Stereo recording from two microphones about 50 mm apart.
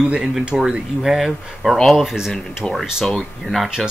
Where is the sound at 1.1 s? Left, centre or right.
Centre.